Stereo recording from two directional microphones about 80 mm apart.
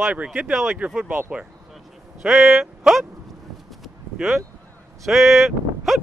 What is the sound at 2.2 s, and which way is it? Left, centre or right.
Speech, centre.